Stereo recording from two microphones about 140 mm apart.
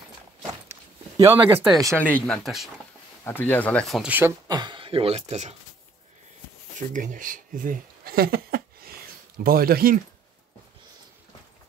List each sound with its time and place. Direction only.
0.7 s a sound: 20° right (ahead or behind)
1.9 s speech: 10° left (ahead or behind)
3.3 s speech: 15° left (ahead or behind)
4.5 s speech: 30° right (ahead or behind); by 5.5 s 50° right (ahead or behind)
6.9 s speech: 65° right (ahead or behind); by 9.9 s 90° right